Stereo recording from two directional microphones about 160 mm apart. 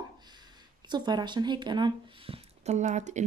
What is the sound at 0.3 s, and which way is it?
Speech, 25° right (ahead or behind).